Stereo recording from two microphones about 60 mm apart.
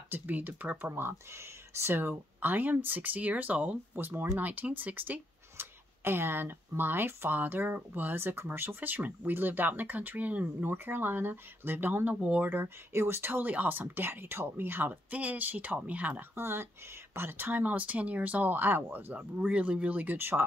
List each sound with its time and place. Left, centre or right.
0.1 s speech: right
12.2 s speech: right
12.4 s speech: right
16.3 s speech: right